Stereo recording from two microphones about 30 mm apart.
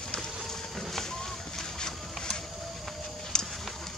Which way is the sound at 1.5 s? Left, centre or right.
Centre.